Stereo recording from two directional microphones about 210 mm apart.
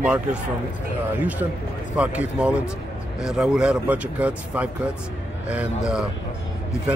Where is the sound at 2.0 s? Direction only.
5° right (ahead or behind).